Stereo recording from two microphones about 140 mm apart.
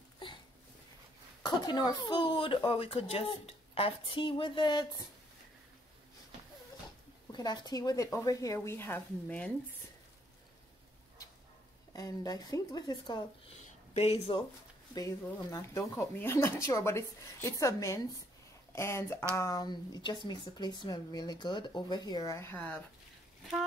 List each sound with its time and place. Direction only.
1.4 s speech: 30° left (ahead or behind)
7.3 s speech: 30° left (ahead or behind); by 9.5 s 10° left (ahead or behind)
11.9 s speech: 25° left (ahead or behind)
13.5 s a sound: 45° left (ahead or behind)
15.0 s speech: 25° left (ahead or behind)